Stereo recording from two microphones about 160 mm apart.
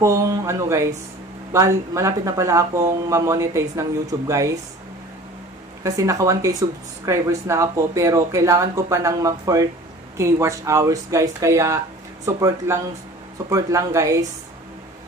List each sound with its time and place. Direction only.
0.0 s speech: 20° right (ahead or behind)
5.9 s speech: 20° right (ahead or behind)